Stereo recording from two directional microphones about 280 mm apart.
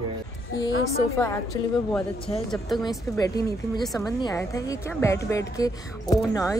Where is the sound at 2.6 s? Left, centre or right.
Centre.